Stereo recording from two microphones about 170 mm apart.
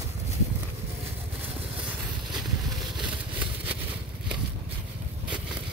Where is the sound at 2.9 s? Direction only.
30° right (ahead or behind).